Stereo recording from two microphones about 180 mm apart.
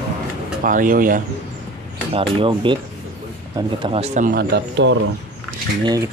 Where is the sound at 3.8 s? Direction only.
35° right (ahead or behind).